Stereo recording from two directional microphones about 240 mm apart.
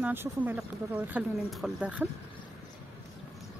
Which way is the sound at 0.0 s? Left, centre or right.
Centre.